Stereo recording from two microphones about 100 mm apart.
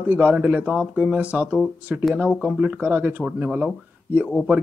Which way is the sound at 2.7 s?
20° right (ahead or behind).